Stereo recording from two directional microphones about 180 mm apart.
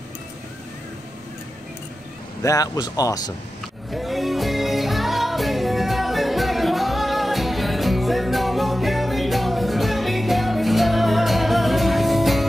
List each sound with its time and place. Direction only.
2.4 s speech: 20° left (ahead or behind)
3.9 s music: centre (ahead or behind)